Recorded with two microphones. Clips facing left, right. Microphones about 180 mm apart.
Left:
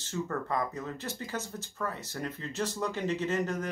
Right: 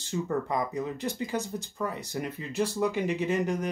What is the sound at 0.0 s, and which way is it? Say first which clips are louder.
Speech: right 4 dB; 15° right (ahead or behind).